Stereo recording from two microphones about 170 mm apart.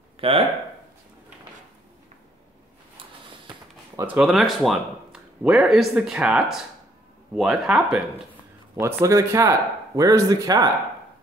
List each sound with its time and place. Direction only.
0.2 s speech: 30° right (ahead or behind)
3.9 s speech: 10° right (ahead or behind)
8.7 s speech: 15° right (ahead or behind)